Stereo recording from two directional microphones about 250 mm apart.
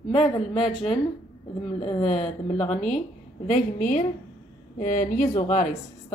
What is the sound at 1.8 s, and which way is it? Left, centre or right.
Speech, left.